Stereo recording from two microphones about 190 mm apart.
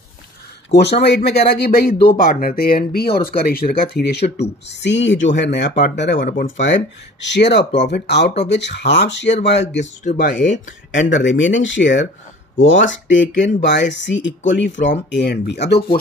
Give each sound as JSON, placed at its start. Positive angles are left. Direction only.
{"t": 0.7, "sound": "speech", "side_deg": 60}
{"t": 6.2, "sound": "speech", "side_deg": 40}
{"t": 6.6, "sound": "speech", "side_deg": 70}
{"t": 10.1, "sound": "speech", "side_deg": 40}
{"t": 10.9, "sound": "speech", "side_deg": 75}